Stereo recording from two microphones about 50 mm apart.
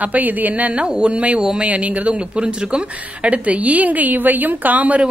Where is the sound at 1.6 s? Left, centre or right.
Right.